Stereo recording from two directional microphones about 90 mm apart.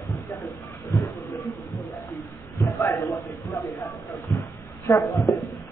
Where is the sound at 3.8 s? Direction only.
40° left (ahead or behind).